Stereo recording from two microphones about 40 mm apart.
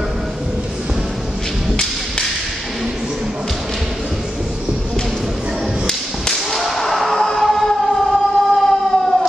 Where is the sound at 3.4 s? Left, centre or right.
Centre.